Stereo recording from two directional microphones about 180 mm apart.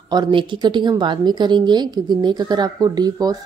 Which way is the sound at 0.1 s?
25° right (ahead or behind).